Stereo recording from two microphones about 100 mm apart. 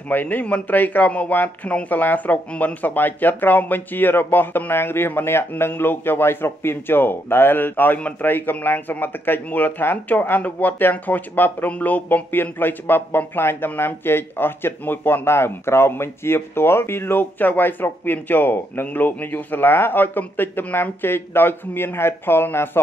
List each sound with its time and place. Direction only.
0.1 s speech: 15° left (ahead or behind)